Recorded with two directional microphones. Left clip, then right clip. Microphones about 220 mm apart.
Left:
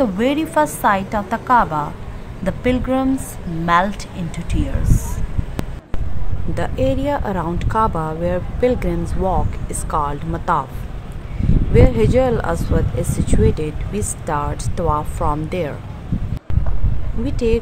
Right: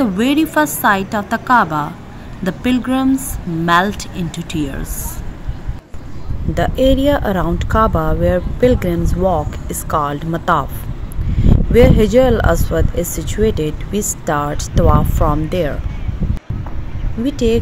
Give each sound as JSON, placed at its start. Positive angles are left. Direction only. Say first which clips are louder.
{"t": 0.0, "sound": "speech", "louder": "right 2 dB", "side_deg": -15}
{"t": 6.5, "sound": "speech", "louder": "right 6 dB", "side_deg": -15}
{"t": 11.7, "sound": "speech", "louder": "right 5 dB", "side_deg": -15}
{"t": 17.2, "sound": "speech", "louder": "right 3 dB", "side_deg": -15}